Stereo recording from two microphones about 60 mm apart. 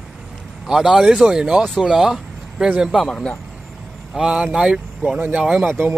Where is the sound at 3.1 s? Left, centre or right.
Centre.